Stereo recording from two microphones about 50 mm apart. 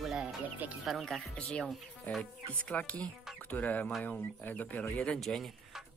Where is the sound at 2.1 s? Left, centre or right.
Left.